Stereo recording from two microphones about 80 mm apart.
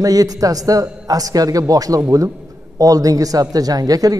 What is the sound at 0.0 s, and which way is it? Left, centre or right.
A man's voice, right.